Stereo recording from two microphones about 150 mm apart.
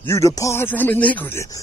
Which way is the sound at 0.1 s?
20° left (ahead or behind).